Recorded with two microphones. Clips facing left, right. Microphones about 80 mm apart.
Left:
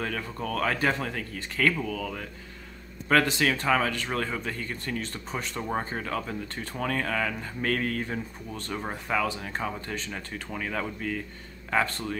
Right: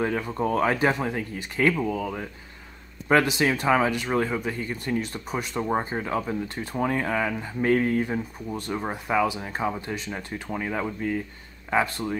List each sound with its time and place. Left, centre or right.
0.0 s speech: right